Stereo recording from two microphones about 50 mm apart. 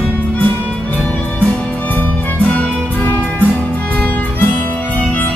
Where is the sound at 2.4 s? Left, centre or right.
Left.